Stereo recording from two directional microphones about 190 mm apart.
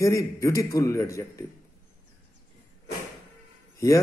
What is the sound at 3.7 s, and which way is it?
Speech, 15° left (ahead or behind).